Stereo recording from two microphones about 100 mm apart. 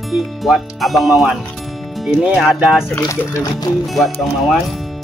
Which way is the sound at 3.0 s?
30° left (ahead or behind).